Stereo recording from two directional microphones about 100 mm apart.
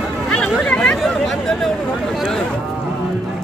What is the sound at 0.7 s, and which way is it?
Chatter, 10° left (ahead or behind).